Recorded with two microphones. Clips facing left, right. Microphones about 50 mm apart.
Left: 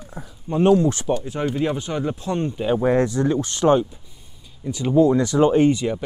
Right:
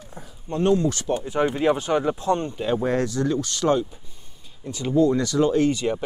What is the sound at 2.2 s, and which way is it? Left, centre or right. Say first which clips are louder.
Speech: left 1 dB; centre.